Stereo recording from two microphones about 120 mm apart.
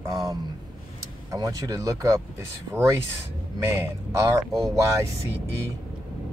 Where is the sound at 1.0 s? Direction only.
30° right (ahead or behind).